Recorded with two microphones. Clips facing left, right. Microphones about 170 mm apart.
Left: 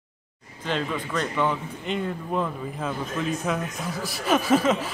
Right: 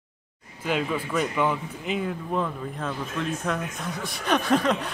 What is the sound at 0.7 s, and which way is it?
Speech, 10° right (ahead or behind).